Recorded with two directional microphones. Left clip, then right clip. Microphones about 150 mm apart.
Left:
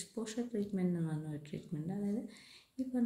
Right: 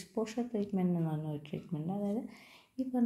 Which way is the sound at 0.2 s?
20° right (ahead or behind).